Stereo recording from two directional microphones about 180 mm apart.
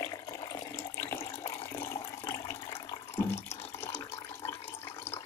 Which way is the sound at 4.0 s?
15° left (ahead or behind).